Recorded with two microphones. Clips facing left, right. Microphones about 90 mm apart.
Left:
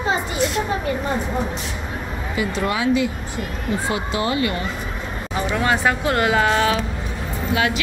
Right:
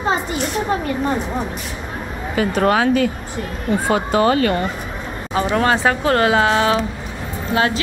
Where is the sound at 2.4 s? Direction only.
50° right (ahead or behind).